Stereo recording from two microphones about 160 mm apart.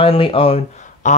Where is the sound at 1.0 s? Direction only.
50° left (ahead or behind).